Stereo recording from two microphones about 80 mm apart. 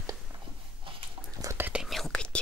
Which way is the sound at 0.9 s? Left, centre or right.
Right.